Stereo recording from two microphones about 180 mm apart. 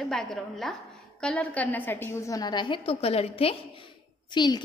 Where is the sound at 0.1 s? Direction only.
Centre (ahead or behind).